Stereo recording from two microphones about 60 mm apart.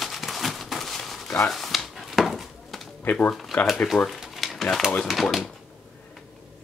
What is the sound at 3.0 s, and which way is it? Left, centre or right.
Speech, left.